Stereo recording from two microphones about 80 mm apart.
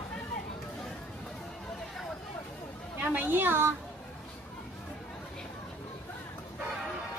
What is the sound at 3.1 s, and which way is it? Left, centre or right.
Speech, right.